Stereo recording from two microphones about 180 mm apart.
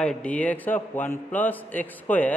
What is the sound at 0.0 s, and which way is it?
A man's voice, 5° left (ahead or behind).